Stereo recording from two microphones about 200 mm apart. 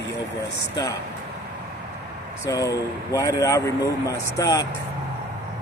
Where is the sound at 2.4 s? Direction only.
15° left (ahead or behind).